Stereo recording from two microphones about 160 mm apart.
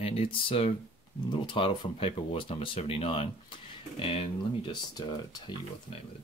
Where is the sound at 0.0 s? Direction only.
35° left (ahead or behind).